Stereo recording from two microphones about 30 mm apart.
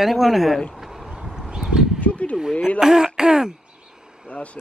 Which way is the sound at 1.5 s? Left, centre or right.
Centre.